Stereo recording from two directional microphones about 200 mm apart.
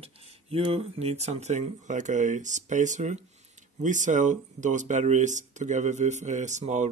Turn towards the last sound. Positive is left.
turn(degrees=-35)  # may be behind; listen again after turning